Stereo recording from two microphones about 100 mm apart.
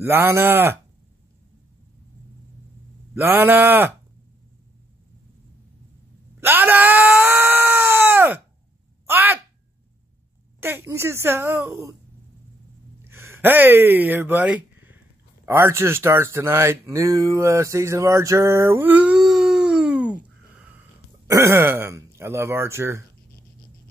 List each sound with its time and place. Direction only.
0.0 s speech: 25° right (ahead or behind)
3.2 s speech: 20° right (ahead or behind)
6.4 s wail: 20° right (ahead or behind)
9.0 s a sound: 20° right (ahead or behind)
10.6 s speech: 25° right (ahead or behind)
13.1 s speech: 25° right (ahead or behind)
21.3 s speech: 25° right (ahead or behind)